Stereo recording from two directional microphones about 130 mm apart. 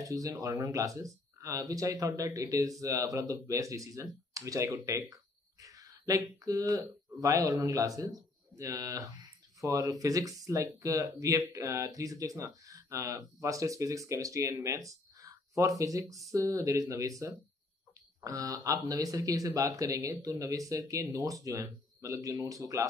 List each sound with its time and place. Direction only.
0.0 s speech: 25° right (ahead or behind)